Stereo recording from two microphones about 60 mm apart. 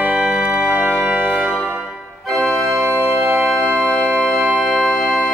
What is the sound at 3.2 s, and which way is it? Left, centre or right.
Organ, centre.